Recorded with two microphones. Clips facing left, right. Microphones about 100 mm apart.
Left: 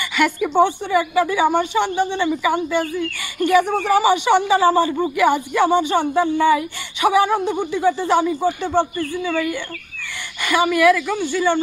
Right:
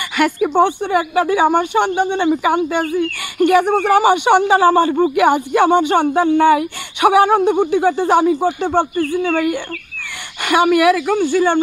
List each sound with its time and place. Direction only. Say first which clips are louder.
0.6 s speech: right 1 dB; 60° right (ahead or behind)